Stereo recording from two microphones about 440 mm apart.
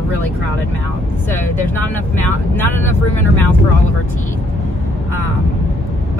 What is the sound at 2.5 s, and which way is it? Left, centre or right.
Speech, centre.